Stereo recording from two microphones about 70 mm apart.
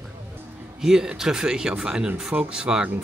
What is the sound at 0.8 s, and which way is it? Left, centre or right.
Speech, centre.